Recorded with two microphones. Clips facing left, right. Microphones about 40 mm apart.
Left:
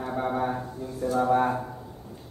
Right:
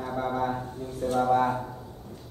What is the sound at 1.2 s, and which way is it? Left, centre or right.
Speech, left.